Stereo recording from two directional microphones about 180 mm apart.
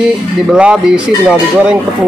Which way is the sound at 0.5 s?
5° right (ahead or behind).